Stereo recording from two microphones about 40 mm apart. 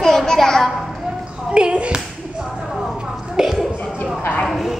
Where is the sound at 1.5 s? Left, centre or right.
Right.